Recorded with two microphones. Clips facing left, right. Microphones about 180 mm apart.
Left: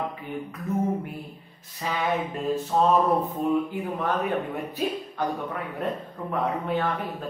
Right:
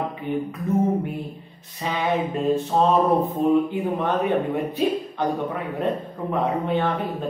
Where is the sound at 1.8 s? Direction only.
25° right (ahead or behind).